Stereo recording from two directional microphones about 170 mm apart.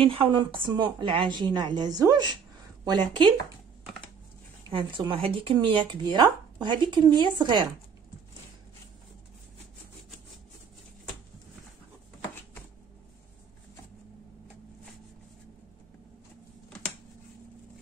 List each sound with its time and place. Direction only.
0.0 s speech: 30° right (ahead or behind)
4.6 s speech: 30° right (ahead or behind)